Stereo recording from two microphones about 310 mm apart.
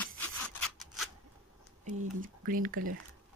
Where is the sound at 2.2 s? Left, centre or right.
Right.